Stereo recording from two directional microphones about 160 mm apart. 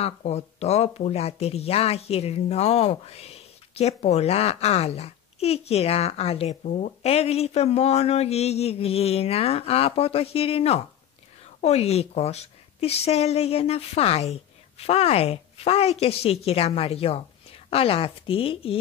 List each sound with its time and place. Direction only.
0.0 s speech: 40° left (ahead or behind)